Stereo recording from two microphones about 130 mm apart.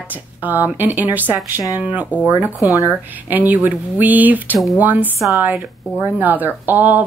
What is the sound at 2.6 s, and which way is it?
Speech, 25° left (ahead or behind).